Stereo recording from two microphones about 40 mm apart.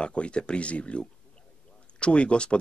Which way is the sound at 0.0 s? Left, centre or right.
Left.